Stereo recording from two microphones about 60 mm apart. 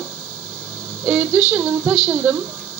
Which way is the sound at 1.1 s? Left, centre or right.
Right.